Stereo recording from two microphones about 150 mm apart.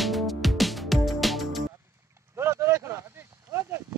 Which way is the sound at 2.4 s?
15° right (ahead or behind).